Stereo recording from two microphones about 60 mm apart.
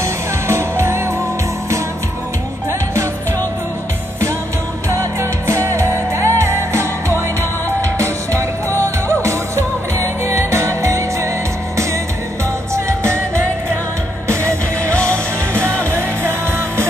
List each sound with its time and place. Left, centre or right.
0.0 s music: right
5.5 s music: right
12.7 s music: right
14.4 s music: centre
16.0 s music: right